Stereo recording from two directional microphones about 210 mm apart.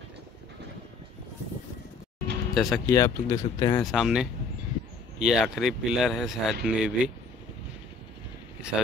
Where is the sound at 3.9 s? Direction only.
5° right (ahead or behind).